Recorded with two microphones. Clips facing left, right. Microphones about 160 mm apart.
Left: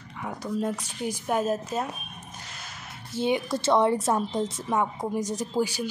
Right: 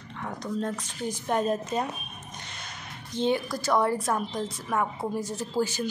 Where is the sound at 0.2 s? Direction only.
10° left (ahead or behind).